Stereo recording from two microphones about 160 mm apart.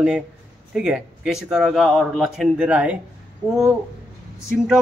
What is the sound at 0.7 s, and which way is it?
Speech, 5° right (ahead or behind).